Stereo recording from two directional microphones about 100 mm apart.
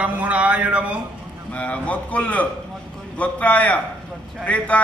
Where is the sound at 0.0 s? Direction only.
15° right (ahead or behind).